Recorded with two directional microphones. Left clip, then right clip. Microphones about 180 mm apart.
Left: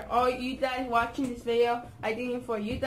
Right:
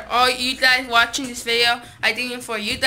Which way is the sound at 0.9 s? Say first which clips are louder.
Right 10 dB; 20° right (ahead or behind).